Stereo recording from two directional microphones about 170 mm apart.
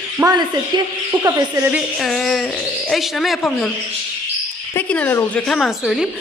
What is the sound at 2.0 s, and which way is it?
Speech, centre (ahead or behind).